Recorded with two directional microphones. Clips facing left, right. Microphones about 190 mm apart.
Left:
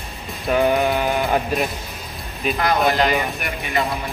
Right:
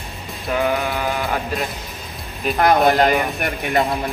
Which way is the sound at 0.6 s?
15° left (ahead or behind).